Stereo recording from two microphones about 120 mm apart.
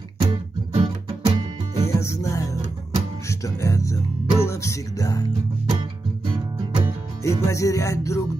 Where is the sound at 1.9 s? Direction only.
25° left (ahead or behind).